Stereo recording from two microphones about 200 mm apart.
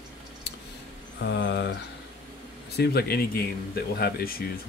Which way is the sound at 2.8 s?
55° left (ahead or behind).